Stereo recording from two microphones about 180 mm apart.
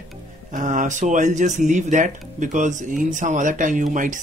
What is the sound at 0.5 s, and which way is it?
Speech, 45° right (ahead or behind).